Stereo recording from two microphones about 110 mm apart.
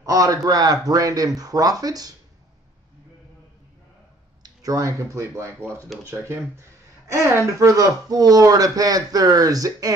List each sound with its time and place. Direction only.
0.0 s speech: 30° right (ahead or behind)
4.4 s speech: 30° right (ahead or behind)